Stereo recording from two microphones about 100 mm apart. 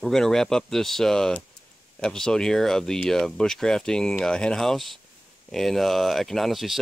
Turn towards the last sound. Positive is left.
turn(degrees=0)  # may be behind; listen again after turning